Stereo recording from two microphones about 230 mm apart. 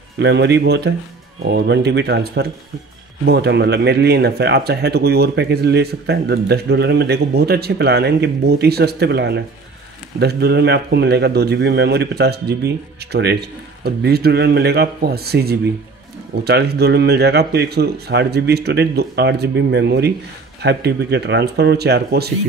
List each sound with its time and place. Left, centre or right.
0.2 s speech: right